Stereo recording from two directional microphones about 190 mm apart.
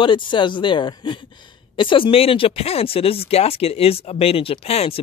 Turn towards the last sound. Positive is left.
turn(degrees=30)  # may be behind; listen again after turning